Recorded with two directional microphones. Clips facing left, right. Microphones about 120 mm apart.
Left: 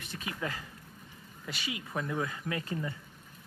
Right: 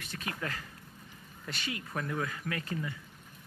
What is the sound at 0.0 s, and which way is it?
Speech, 20° left (ahead or behind).